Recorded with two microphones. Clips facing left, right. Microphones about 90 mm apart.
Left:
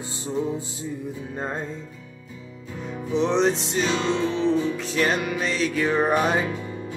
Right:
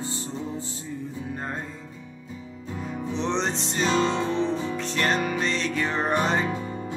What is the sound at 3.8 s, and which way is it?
Music, 35° right (ahead or behind).